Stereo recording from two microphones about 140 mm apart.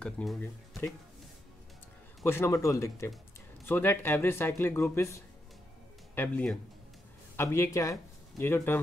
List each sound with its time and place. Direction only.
0.0 s speech: centre (ahead or behind)
2.2 s speech: 20° left (ahead or behind)